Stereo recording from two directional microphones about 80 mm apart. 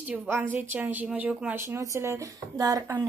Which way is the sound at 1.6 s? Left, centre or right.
Right.